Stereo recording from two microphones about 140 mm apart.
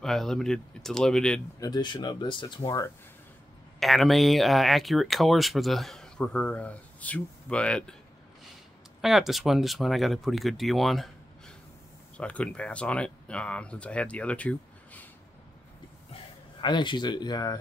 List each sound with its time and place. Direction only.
0.0 s speech: 5° left (ahead or behind)
1.6 s speech: 30° left (ahead or behind)
3.8 s speech: centre (ahead or behind)
9.0 s speech: centre (ahead or behind)
16.6 s speech: 30° left (ahead or behind)